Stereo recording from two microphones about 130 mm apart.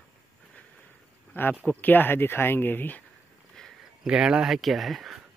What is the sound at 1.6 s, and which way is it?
Speech, 15° left (ahead or behind).